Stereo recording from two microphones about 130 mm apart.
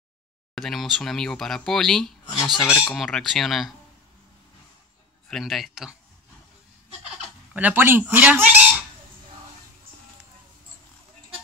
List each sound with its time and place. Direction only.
0.6 s speech: centre (ahead or behind)
2.6 s speech: 20° left (ahead or behind)
2.9 s speech: 5° left (ahead or behind)
5.3 s speech: centre (ahead or behind)
7.5 s fowl: 15° right (ahead or behind)